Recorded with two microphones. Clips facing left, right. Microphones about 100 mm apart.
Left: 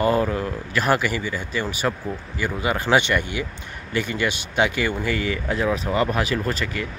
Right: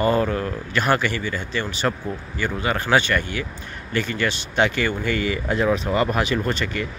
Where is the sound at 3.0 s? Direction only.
15° left (ahead or behind).